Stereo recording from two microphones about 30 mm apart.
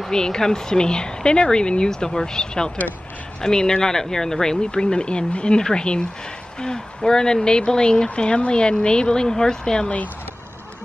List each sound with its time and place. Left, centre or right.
0.1 s speech: left